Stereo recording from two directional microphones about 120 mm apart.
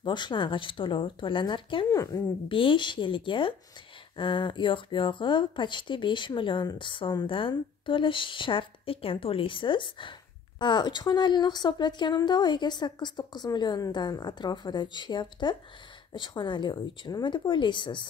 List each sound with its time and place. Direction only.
0.0 s speech: 40° left (ahead or behind)
1.9 s a woman's voice: 30° left (ahead or behind)
2.4 s a woman's voice: 45° left (ahead or behind)